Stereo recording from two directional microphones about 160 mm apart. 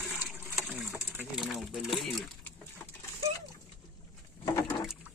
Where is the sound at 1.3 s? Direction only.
Centre (ahead or behind).